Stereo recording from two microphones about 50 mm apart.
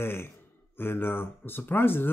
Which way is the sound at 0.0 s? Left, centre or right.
Left.